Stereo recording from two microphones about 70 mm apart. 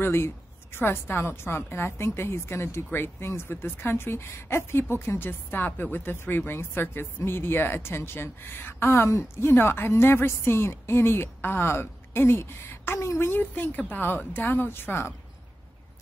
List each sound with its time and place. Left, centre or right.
0.0 s a woman's voice: left
13.3 s speech: left